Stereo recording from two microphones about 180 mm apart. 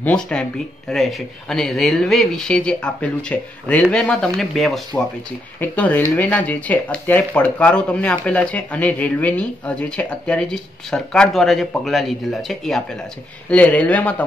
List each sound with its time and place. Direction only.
0.0 s speech: 5° left (ahead or behind)